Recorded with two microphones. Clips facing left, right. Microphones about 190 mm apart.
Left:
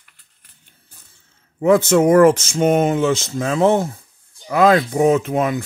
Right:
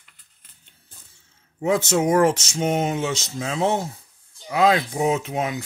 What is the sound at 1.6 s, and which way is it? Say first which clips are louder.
Speech: left 7 dB; 55° left (ahead or behind).